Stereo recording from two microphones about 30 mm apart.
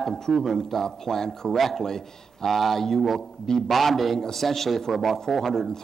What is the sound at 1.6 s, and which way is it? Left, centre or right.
Speech, centre.